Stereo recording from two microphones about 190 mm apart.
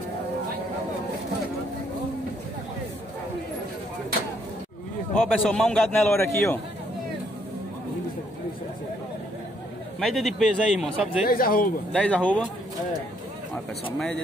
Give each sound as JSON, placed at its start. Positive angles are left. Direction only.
{"t": 5.2, "sound": "a man's voice", "side_deg": 5}
{"t": 9.9, "sound": "a man's voice", "side_deg": 0}
{"t": 11.2, "sound": "speech", "side_deg": 50}
{"t": 11.9, "sound": "a man's voice", "side_deg": 5}